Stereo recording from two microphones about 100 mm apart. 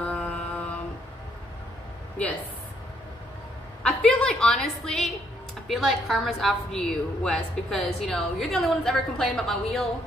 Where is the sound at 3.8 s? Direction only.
10° left (ahead or behind).